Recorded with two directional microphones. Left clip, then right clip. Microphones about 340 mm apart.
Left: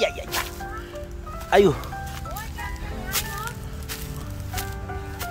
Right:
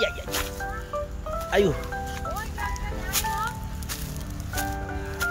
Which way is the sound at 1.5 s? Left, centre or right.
Centre.